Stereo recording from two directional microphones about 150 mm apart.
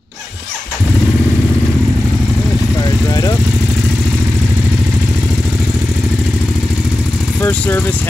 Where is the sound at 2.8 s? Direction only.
25° left (ahead or behind).